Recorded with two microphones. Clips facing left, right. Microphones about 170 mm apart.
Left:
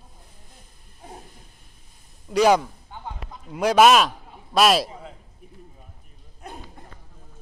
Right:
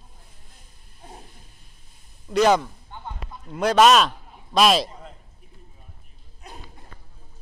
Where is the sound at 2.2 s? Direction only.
10° left (ahead or behind).